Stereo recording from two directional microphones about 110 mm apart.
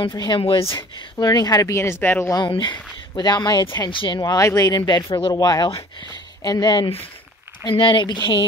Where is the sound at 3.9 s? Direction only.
50° left (ahead or behind).